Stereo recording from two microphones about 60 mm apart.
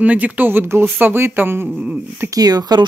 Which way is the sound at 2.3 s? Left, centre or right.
Right.